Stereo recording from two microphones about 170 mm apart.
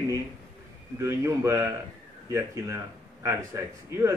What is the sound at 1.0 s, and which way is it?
Speech, 15° right (ahead or behind).